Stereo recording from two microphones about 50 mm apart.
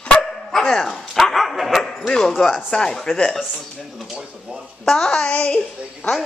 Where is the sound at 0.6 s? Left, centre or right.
Centre.